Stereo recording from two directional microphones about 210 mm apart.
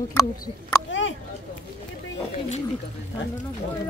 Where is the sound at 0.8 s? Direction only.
65° left (ahead or behind).